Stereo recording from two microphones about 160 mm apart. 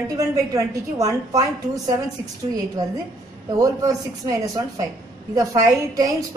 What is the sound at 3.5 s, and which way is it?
A woman's voice, 20° right (ahead or behind).